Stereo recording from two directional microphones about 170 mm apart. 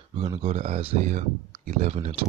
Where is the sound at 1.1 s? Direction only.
45° right (ahead or behind).